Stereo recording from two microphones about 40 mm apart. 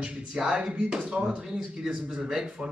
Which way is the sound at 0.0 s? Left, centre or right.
Right.